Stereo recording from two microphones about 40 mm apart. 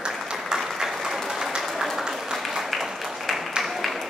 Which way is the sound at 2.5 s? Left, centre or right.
Centre.